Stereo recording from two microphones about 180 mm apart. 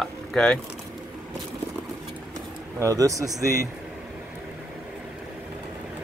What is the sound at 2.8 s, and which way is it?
Speech, 20° right (ahead or behind).